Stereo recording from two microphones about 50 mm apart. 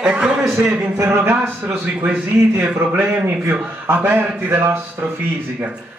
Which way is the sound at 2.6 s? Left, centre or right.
Right.